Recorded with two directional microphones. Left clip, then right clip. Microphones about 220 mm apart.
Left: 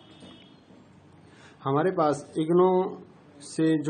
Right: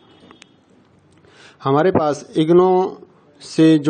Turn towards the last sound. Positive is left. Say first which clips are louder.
# right 12 dB
turn(degrees=-40)  # may be behind; listen again after turning